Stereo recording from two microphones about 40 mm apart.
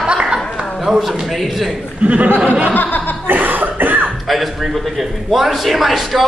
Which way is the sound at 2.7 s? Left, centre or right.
Left.